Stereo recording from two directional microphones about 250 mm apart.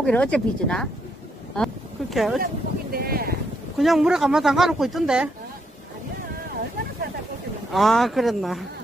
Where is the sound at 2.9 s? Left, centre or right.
Right.